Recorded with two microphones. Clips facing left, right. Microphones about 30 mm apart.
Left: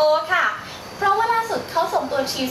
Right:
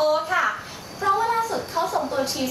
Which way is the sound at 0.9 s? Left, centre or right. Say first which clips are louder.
Left 3 dB; left.